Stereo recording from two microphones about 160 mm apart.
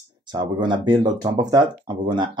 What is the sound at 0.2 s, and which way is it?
Speech, 30° right (ahead or behind).